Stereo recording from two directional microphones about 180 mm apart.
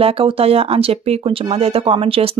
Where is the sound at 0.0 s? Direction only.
30° right (ahead or behind).